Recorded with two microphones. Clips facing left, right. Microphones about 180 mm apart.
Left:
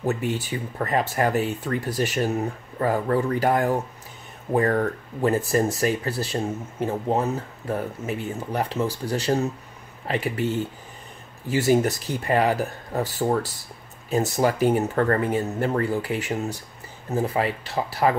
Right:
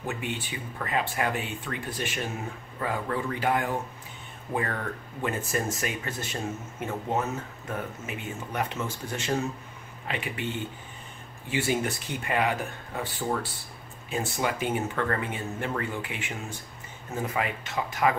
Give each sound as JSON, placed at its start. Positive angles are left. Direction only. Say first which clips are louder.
{"t": 0.0, "sound": "speech", "louder": "left 8 dB", "side_deg": 40}